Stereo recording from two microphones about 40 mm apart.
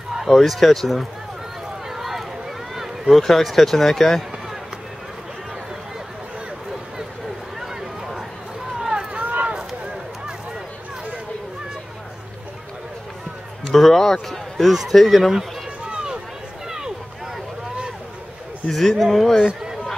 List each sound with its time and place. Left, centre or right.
0.3 s speech: centre
1.9 s run: centre
2.7 s a sound: centre
3.2 s speech: centre
8.7 s a sound: centre
9.1 s run: right
13.7 s speech: centre
15.9 s run: right
16.6 s a sound: centre
18.7 s speech: centre
19.4 s run: centre